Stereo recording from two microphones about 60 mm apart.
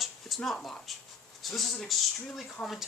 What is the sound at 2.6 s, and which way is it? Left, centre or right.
Speech, left.